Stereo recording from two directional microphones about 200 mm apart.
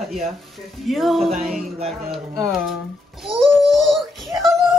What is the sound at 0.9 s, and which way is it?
A woman's voice, centre (ahead or behind).